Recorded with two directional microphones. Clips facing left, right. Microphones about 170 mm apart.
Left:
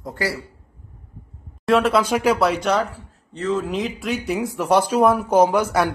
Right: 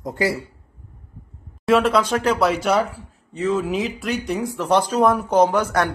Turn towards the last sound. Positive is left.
turn(degrees=10)  # may be behind; listen again after turning